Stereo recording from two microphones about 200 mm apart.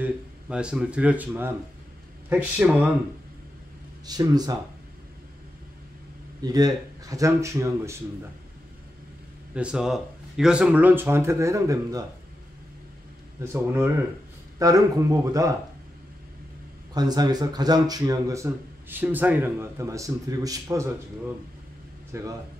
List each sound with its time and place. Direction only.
0.0 s speech: 5° right (ahead or behind)
4.0 s speech: 20° right (ahead or behind)
6.4 s speech: 20° right (ahead or behind)
9.5 s speech: 5° right (ahead or behind)
13.4 s speech: 10° right (ahead or behind)
16.9 s speech: 20° right (ahead or behind)
22.1 s speech: 15° right (ahead or behind)